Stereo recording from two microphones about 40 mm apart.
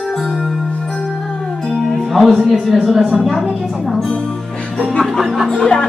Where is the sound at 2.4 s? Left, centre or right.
Centre.